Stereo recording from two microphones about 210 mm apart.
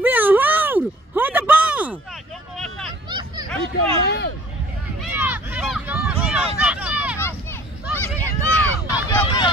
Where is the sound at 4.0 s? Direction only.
50° left (ahead or behind).